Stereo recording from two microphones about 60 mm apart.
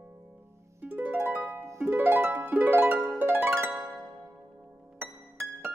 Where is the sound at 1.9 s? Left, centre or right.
Right.